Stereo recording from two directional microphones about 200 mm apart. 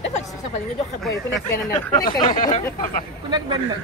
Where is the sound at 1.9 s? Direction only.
20° left (ahead or behind).